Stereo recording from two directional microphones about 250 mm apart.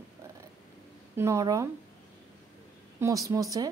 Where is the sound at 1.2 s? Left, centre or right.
Centre.